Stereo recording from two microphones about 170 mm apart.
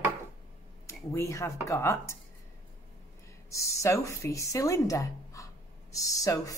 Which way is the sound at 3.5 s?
20° left (ahead or behind).